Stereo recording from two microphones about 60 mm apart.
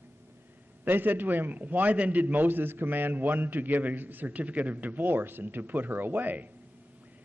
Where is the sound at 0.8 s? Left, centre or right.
Right.